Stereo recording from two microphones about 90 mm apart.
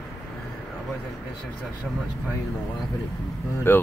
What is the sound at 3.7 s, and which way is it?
Speech, 25° left (ahead or behind).